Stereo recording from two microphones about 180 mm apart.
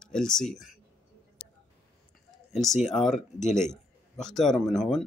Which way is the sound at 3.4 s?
40° left (ahead or behind).